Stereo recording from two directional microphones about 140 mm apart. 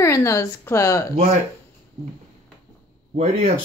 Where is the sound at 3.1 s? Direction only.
60° right (ahead or behind).